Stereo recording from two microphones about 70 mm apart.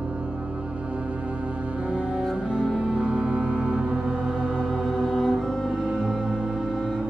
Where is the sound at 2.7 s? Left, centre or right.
Centre.